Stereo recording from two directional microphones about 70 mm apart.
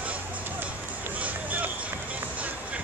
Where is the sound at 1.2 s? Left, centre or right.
Right.